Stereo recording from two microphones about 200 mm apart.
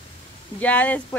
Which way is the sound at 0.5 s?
5° left (ahead or behind).